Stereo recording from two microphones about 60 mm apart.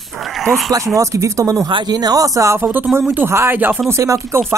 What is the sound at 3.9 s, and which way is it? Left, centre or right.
Speech, right.